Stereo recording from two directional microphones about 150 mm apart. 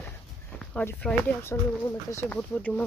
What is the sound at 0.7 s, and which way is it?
Speech, 10° left (ahead or behind).